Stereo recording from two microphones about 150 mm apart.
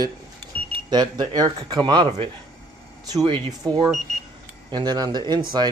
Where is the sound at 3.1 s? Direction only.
25° right (ahead or behind).